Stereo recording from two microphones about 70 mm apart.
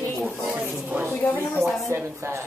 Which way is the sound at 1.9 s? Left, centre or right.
Right.